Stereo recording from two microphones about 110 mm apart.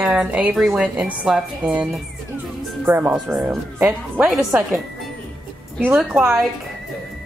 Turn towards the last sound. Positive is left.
turn(degrees=-5)  # may be behind; listen again after turning